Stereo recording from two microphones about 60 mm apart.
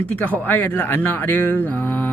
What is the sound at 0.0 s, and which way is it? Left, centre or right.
Speech, left.